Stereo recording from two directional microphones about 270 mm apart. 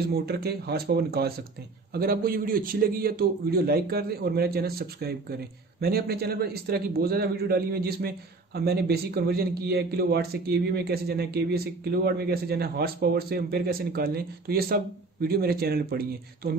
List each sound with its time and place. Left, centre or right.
0.1 s a man's voice: right